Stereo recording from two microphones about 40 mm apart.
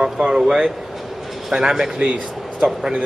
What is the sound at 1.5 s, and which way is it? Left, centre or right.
Speech, centre.